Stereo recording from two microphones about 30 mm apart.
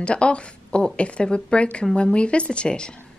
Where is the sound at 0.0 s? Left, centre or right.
Left.